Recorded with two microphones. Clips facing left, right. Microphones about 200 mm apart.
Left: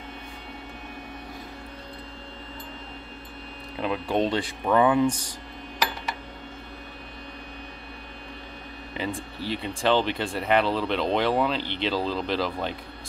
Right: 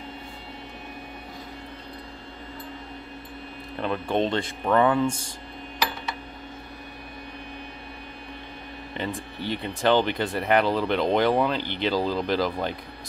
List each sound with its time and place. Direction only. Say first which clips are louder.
3.8 s speech: even; 5° left (ahead or behind)
8.9 s speech: even; 5° left (ahead or behind)